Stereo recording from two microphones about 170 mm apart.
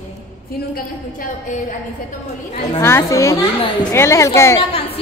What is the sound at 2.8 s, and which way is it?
A woman's voice, 15° left (ahead or behind).